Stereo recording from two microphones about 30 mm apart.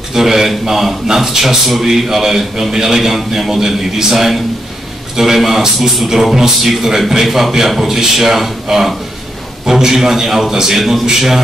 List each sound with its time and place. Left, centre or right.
0.1 s a man's voice: centre